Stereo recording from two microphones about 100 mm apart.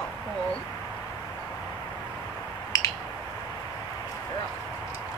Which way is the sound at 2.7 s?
35° left (ahead or behind).